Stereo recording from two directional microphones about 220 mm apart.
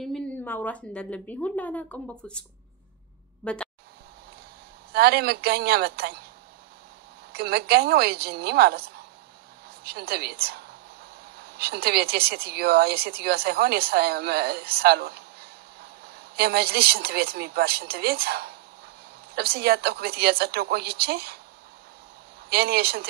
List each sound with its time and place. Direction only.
0.0 s a woman's voice: 5° left (ahead or behind)
3.4 s speech: 5° left (ahead or behind)
4.9 s speech: 45° right (ahead or behind)
7.3 s speech: 45° right (ahead or behind)
22.5 s speech: 45° right (ahead or behind)